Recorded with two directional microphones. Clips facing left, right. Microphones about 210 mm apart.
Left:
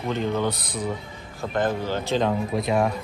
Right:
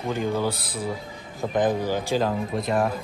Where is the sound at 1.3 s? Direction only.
15° right (ahead or behind); by 2.9 s centre (ahead or behind).